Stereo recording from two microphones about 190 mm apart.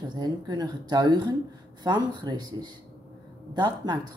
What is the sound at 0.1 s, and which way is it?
Speech, 20° right (ahead or behind).